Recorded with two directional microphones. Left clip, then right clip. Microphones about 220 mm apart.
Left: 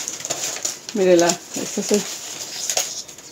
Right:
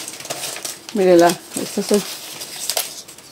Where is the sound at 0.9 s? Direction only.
35° right (ahead or behind).